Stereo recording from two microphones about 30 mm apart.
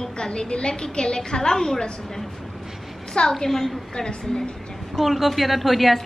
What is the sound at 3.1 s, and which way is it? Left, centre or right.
Speech, left.